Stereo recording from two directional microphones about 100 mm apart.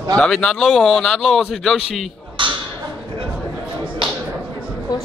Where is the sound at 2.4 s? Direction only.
55° right (ahead or behind).